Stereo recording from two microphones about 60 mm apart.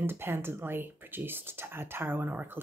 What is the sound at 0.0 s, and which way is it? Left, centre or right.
Speech, right.